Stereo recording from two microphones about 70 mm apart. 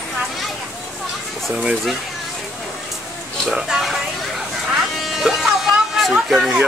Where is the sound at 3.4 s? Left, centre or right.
Centre.